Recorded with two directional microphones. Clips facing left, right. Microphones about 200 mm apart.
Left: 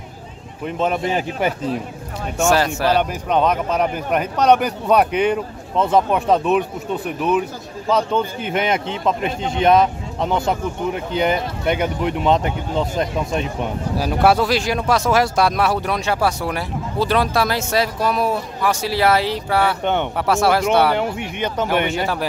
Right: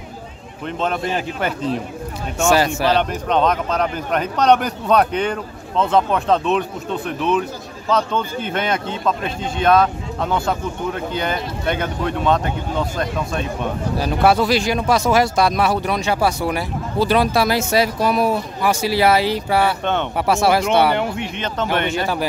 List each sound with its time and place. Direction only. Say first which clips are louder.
0.7 s a man's voice: left 2 dB; 10° left (ahead or behind)
2.3 s a man's voice: right 1 dB; centre (ahead or behind); by 13.5 s 20° left (ahead or behind)
13.9 s speech: even; 5° left (ahead or behind)
19.8 s a man's voice: left 1 dB; 15° left (ahead or behind)
20.2 s a man's voice: right 2 dB; 5° right (ahead or behind)